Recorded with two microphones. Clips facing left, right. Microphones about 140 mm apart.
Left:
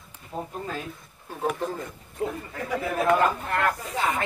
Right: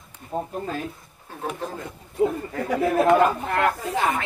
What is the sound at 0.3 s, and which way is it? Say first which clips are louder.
Speech: right 5 dB; 50° right (ahead or behind).